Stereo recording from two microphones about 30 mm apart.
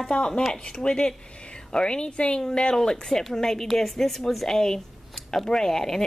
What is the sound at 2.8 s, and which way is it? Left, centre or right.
A woman's voice, left.